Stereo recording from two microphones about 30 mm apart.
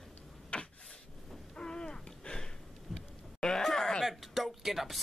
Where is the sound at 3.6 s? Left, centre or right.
Centre.